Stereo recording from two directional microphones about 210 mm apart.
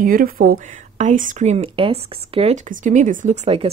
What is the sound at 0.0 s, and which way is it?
A woman's voice, 40° right (ahead or behind).